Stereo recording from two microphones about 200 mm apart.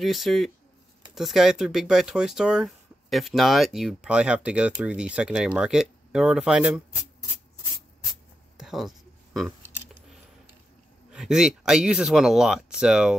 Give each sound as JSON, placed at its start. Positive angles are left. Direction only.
{"t": 0.0, "sound": "speech", "side_deg": 0}
{"t": 8.1, "sound": "writing", "side_deg": 0}
{"t": 9.7, "sound": "a sound", "side_deg": -10}
{"t": 11.1, "sound": "speech", "side_deg": -5}